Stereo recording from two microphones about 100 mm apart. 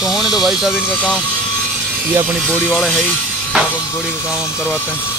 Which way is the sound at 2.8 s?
15° left (ahead or behind).